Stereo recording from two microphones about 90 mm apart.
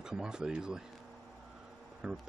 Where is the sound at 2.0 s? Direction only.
10° right (ahead or behind).